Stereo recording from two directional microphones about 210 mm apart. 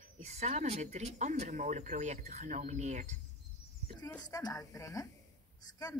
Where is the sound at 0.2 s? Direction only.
30° right (ahead or behind).